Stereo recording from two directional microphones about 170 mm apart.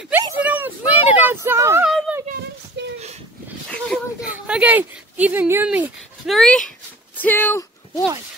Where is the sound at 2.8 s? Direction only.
90° right.